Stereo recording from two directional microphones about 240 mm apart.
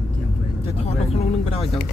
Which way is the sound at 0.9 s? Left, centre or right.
Left.